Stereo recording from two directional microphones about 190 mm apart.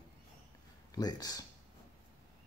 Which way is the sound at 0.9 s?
20° left (ahead or behind).